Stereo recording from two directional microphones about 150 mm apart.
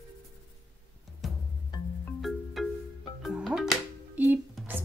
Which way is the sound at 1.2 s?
Centre (ahead or behind).